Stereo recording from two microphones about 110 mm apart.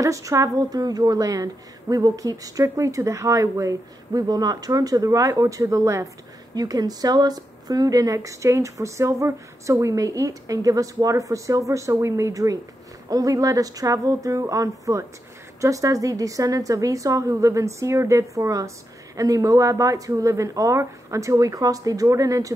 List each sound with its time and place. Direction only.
0.0 s a woman's voice: 30° right (ahead or behind)